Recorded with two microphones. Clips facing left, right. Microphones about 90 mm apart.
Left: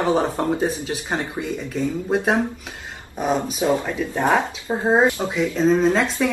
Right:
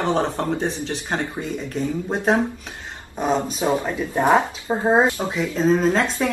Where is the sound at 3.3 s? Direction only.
30° right (ahead or behind).